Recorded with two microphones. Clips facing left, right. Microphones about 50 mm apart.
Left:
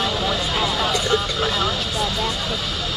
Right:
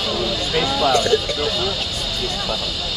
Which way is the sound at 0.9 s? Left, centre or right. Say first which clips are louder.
Right 3 dB; left.